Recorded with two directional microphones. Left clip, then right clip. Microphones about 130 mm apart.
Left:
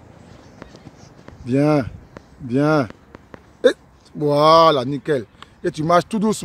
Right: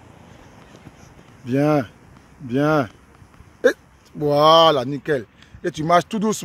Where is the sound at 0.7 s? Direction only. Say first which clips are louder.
Left 1 dB; 10° left (ahead or behind).